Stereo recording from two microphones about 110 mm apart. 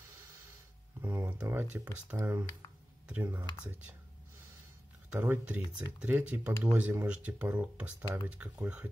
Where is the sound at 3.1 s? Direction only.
15° right (ahead or behind).